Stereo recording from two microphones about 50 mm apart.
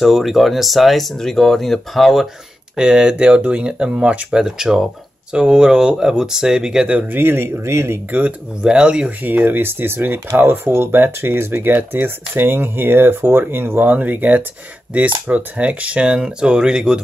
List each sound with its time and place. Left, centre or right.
0.0 s speech: centre
2.7 s speech: centre
4.4 s speech: centre
7.1 s speech: right
8.6 s speech: centre
9.2 s speech: right; by 17.0 s centre